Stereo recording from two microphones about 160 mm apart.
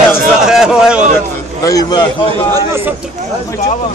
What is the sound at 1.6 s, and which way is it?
Speech, 25° left (ahead or behind).